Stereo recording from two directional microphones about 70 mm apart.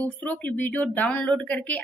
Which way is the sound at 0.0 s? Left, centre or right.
Left.